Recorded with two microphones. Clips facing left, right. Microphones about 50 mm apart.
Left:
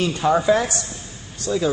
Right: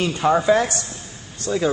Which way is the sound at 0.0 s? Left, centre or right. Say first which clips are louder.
Even; centre.